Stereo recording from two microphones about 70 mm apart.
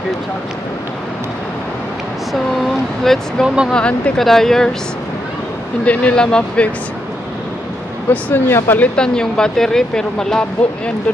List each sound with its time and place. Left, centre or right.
2.3 s a sound: centre
3.4 s speech: centre
3.7 s speech: centre
4.2 s speech: centre
5.9 s speech: centre
8.1 s speech: left; by 10.4 s centre